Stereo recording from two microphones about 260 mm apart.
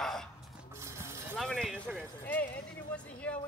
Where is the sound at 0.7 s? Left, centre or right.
Centre.